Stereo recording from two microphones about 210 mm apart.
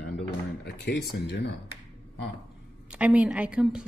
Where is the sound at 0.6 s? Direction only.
50° left (ahead or behind).